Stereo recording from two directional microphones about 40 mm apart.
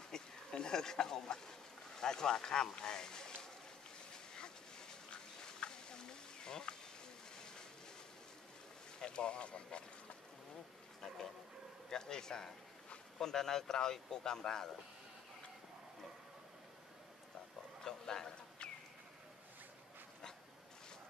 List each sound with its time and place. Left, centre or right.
0.1 s a sound: centre
2.0 s speech: centre
4.3 s a sound: centre
9.0 s speech: left
11.9 s speech: centre
17.8 s bird: centre